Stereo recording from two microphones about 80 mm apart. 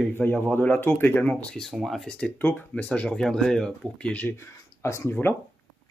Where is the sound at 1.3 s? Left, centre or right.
Centre.